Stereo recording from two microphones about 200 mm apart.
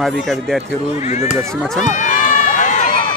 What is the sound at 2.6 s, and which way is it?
Run, 40° left (ahead or behind).